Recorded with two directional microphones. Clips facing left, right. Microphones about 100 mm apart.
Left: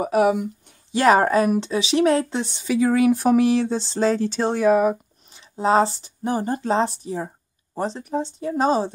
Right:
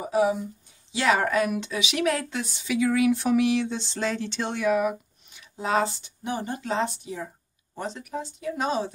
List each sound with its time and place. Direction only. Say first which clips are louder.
0.0 s speech: left 5 dB; 70° left (ahead or behind)
0.9 s speech: left 6 dB; 45° left (ahead or behind)